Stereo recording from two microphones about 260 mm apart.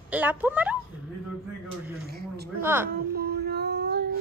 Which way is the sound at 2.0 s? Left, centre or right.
Right.